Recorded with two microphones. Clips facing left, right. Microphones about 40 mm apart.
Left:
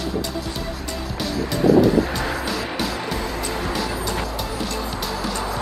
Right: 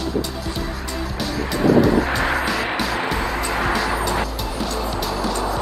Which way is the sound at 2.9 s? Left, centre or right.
Right.